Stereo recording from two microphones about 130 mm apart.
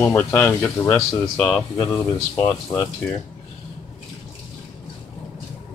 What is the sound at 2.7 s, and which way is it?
Speech, 25° left (ahead or behind).